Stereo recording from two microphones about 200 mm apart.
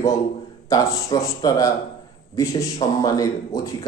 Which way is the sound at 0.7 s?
15° left (ahead or behind).